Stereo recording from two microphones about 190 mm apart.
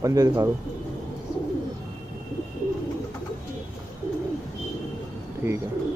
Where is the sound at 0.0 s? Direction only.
20° right (ahead or behind).